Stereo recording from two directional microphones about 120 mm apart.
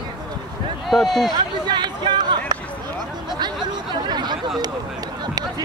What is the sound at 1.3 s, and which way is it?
Speech, 40° right (ahead or behind).